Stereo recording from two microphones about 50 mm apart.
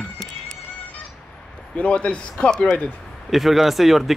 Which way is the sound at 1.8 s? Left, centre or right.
Left.